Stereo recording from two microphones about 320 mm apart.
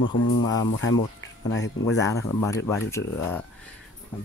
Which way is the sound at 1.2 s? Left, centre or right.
Left.